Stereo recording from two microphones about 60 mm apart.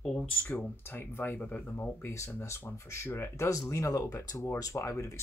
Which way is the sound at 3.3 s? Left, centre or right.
Left.